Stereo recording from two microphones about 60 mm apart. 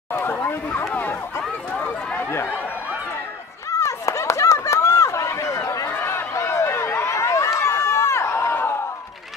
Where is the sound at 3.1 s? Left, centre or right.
Left.